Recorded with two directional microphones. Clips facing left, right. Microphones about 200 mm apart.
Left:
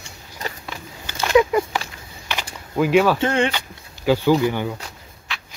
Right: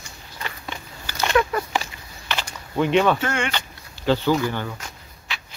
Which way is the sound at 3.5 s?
10° left (ahead or behind).